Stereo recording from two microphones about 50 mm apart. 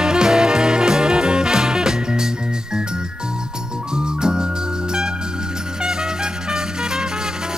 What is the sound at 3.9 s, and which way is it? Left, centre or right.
Music, centre.